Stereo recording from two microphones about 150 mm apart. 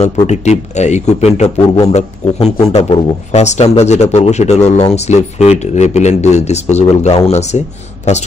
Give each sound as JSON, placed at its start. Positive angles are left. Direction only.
{"t": 0.0, "sound": "speech", "side_deg": 50}